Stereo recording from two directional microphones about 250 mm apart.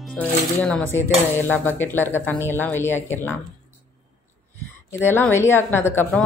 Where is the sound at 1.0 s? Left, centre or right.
Centre.